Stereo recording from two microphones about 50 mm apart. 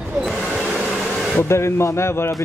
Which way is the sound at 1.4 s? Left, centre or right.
Left.